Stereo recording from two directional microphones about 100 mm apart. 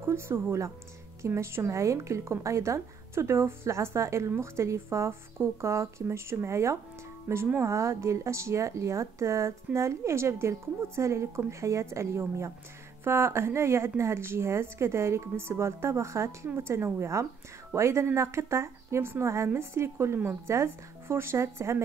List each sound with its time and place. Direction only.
0.0 s speech: 25° right (ahead or behind)